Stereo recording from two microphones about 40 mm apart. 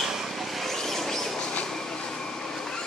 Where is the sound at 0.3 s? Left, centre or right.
Centre.